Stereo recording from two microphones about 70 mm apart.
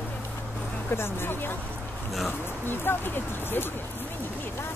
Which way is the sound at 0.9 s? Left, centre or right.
Left.